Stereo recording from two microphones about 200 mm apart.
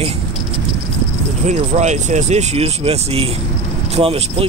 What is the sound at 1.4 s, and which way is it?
Speech, 35° right (ahead or behind).